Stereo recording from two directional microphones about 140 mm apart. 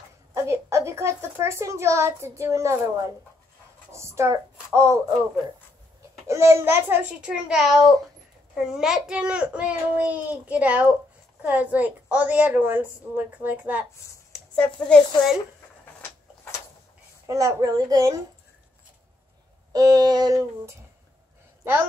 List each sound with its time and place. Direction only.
0.3 s a child's voice: 20° right (ahead or behind)
4.7 s female singing: 20° right (ahead or behind)
6.2 s a woman's voice: 20° right (ahead or behind)
14.3 s speech: 5° left (ahead or behind)
17.3 s female singing: 25° right (ahead or behind)
19.7 s female singing: 30° right (ahead or behind)